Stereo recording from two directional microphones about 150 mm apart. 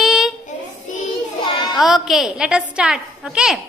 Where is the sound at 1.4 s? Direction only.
30° left (ahead or behind).